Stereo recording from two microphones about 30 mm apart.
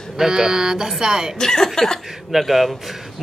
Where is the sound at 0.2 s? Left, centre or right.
Centre.